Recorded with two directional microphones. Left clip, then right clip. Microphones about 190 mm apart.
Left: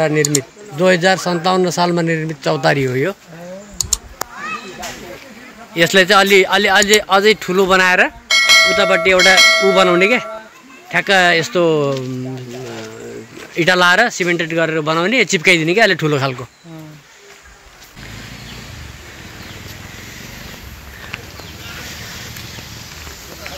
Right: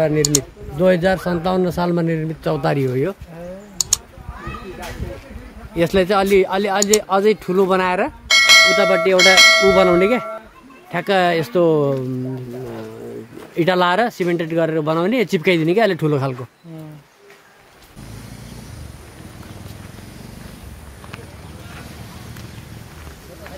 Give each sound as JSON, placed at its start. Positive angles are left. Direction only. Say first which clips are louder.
{"t": 0.0, "sound": "speech", "louder": "left 2 dB", "side_deg": 0}
{"t": 3.8, "sound": "a sound", "louder": "even", "side_deg": 0}
{"t": 5.8, "sound": "speech", "louder": "left 6 dB", "side_deg": -5}
{"t": 8.7, "sound": "speech", "louder": "left 2 dB", "side_deg": -20}
{"t": 9.1, "sound": "speech", "louder": "even", "side_deg": 0}
{"t": 9.8, "sound": "speech", "louder": "left 2 dB", "side_deg": -15}
{"t": 13.6, "sound": "speech", "louder": "left 4 dB", "side_deg": -15}